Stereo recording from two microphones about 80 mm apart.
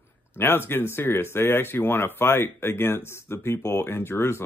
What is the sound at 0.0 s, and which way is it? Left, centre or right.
Speech, left.